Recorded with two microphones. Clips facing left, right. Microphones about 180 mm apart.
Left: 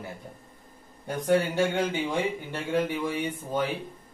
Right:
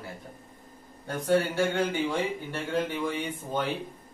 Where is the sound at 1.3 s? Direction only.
20° left (ahead or behind).